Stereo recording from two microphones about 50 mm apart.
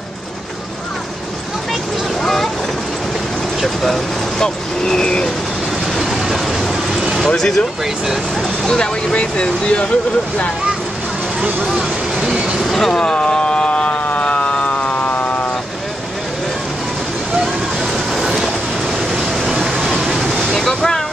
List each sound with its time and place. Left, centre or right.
2.2 s a sound: centre
3.6 s speech: centre
5.9 s vehicle: centre
7.2 s speech: centre
8.4 s vehicle: centre
9.1 s speech: left
12.7 s speech: centre
13.0 s a sound: centre
14.2 s siren: left
17.9 s train: centre
19.1 s a sound: centre
20.2 s waves: centre